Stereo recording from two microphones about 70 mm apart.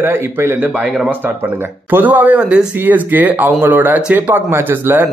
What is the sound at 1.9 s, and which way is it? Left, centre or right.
Speech, right.